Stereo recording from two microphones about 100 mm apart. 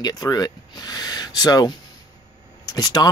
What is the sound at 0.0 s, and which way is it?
Speech, 40° left (ahead or behind).